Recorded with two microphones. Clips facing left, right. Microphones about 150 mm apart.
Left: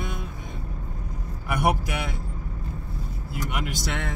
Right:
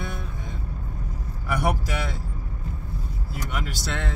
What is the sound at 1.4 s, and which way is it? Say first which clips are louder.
Speech: left 1 dB; 15° left (ahead or behind).